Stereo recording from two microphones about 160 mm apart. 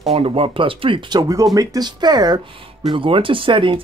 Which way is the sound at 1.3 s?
20° right (ahead or behind).